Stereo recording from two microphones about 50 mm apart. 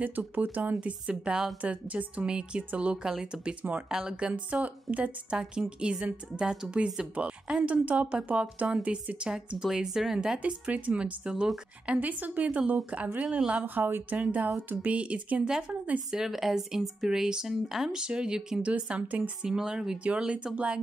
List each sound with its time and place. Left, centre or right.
0.0 s speech: right; by 1.5 s centre
1.6 s a woman's voice: right
2.2 s a woman's voice: centre
3.1 s speech: centre
4.3 s a woman's voice: right
5.4 s a woman's voice: centre
10.4 s a woman's voice: right
11.9 s a woman's voice: right
13.7 s speech: right
14.1 s speech: right
15.0 s a woman's voice: right
16.1 s speech: centre
18.0 s a woman's voice: centre
19.4 s a woman's voice: centre